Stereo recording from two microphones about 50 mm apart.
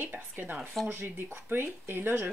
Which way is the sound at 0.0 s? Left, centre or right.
Right.